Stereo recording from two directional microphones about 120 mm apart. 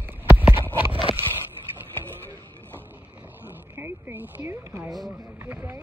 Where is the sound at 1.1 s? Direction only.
50° right (ahead or behind).